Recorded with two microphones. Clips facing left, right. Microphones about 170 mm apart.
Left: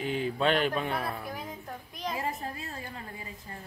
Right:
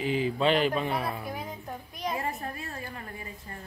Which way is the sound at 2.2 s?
20° left (ahead or behind).